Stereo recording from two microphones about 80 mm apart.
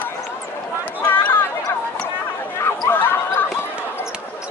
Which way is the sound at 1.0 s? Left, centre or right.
Left.